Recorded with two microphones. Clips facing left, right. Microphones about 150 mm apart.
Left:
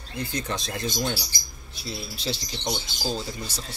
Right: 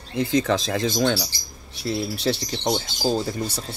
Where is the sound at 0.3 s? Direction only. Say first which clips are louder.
Right 11 dB; 90° right.